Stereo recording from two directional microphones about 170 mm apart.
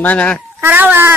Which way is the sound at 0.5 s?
10° right (ahead or behind).